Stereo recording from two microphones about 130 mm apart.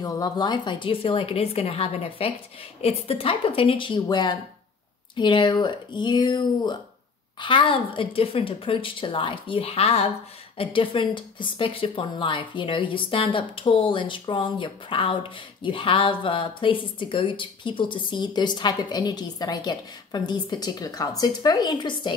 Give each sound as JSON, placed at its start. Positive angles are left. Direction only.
{"t": 0.0, "sound": "a woman's voice", "side_deg": 30}